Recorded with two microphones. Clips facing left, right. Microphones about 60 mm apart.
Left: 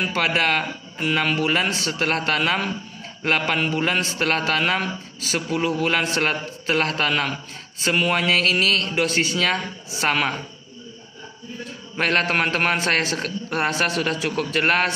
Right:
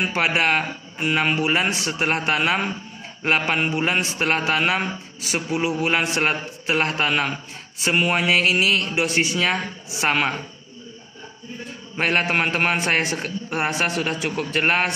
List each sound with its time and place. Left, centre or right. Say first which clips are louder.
0.0 s a man's voice: right 1 dB; right
12.0 s a man's voice: even; centre